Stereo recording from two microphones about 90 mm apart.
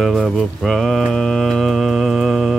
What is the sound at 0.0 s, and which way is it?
Mantra, centre (ahead or behind).